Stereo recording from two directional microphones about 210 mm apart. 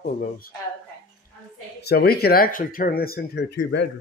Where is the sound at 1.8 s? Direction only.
50° left (ahead or behind).